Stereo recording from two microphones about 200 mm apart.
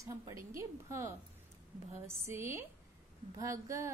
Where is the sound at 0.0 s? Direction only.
15° right (ahead or behind).